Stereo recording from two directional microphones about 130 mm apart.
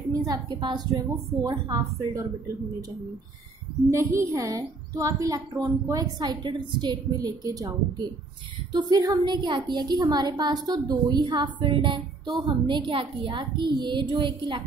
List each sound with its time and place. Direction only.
0.1 s a woman's voice: 30° right (ahead or behind)
4.4 s a woman's voice: 25° right (ahead or behind)